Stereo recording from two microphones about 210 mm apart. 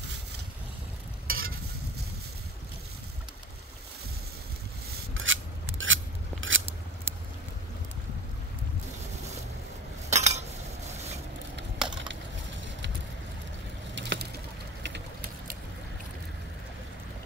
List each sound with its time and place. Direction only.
1.2 s stir: 75° right (ahead or behind)
5.1 s filing: 65° right (ahead or behind)
6.4 s scissors: 65° right (ahead or behind)
10.0 s cutlery: 30° right (ahead or behind)
13.9 s boat: 55° right (ahead or behind)
14.8 s vehicle: 50° right (ahead or behind)